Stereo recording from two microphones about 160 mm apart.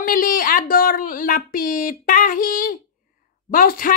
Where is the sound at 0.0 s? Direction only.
60° left (ahead or behind).